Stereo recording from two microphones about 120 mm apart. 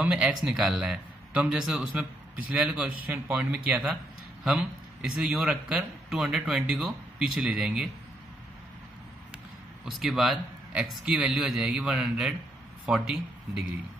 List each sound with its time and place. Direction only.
0.0 s a man's voice: 10° right (ahead or behind)
9.8 s speech: centre (ahead or behind)